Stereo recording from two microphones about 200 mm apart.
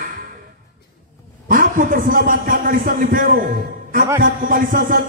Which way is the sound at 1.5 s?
40° right (ahead or behind).